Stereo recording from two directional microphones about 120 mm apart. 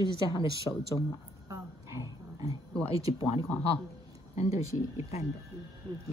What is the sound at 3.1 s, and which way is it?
Speech, 50° left (ahead or behind).